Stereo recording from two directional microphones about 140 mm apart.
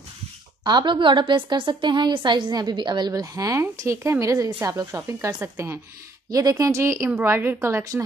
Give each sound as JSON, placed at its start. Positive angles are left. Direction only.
{"t": 0.7, "sound": "a woman's voice", "side_deg": -30}